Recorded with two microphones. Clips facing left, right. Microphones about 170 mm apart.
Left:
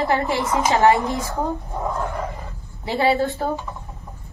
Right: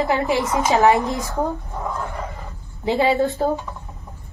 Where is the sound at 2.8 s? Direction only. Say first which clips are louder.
Right 1 dB; 20° right (ahead or behind).